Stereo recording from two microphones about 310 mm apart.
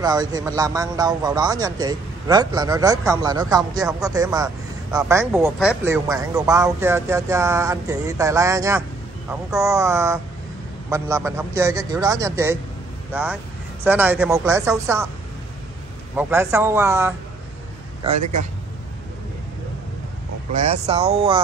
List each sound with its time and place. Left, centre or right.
0.0 s a man's voice: centre
16.2 s a man's voice: centre
20.5 s speech: right